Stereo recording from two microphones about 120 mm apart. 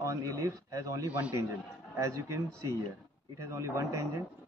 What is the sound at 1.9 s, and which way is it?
Speech, 25° right (ahead or behind).